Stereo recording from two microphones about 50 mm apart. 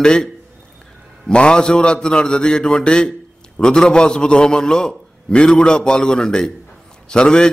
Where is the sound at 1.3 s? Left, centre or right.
Centre.